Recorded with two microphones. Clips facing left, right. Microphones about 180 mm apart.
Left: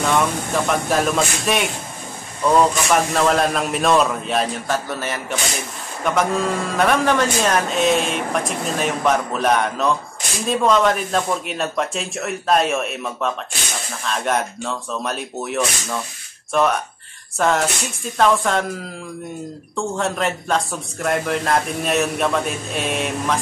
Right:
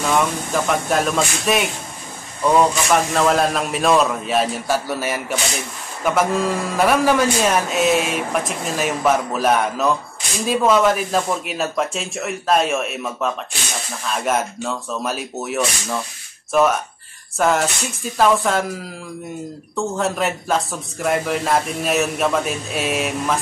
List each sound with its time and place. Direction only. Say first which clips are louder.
0.1 s a man's voice: right 3 dB; centre (ahead or behind)